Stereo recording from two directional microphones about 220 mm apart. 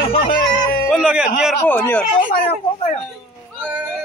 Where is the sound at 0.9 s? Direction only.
5° right (ahead or behind).